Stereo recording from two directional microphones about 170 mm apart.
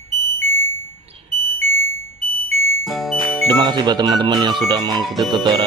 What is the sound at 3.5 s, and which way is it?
Speech, 25° right (ahead or behind).